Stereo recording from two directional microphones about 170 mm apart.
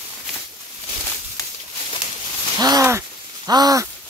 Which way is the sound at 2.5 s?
25° right (ahead or behind).